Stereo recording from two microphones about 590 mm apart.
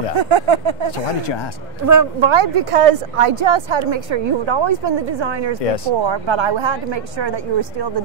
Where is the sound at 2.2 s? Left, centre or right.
Right.